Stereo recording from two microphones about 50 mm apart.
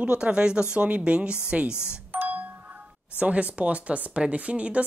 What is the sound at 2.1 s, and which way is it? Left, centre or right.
Doorbell, right.